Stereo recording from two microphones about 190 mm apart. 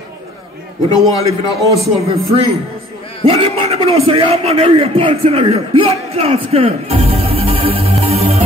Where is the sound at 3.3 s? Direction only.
30° right (ahead or behind).